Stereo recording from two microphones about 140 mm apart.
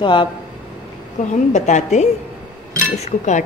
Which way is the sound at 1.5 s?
55° left (ahead or behind).